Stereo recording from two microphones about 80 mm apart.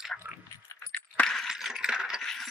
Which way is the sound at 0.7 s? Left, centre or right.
Left.